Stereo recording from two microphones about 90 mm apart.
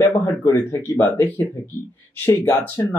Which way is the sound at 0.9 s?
25° left (ahead or behind).